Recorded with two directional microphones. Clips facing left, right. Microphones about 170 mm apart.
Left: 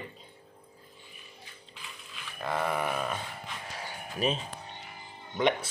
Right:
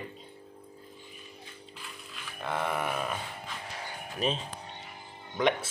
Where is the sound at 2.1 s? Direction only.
Centre (ahead or behind).